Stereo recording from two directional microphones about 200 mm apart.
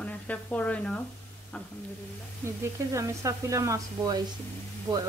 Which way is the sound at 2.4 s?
15° right (ahead or behind).